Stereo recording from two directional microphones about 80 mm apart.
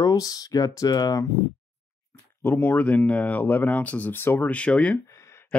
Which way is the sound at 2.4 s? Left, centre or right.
Left.